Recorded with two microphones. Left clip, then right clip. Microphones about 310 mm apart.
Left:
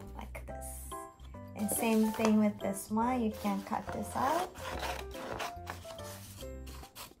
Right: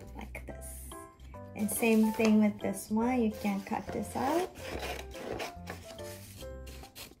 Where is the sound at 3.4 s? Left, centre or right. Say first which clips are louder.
Even; left.